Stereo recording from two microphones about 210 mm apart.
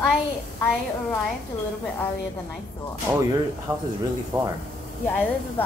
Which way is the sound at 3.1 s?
10° right (ahead or behind).